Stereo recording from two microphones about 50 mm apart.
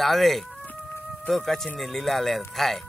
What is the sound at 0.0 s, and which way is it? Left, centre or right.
Speech, centre.